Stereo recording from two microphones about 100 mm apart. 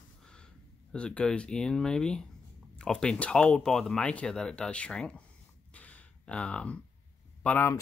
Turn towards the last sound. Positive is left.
turn(degrees=20)  # may be behind; listen again after turning